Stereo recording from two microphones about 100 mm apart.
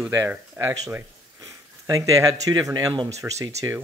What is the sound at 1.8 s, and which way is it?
Speech, 35° right (ahead or behind).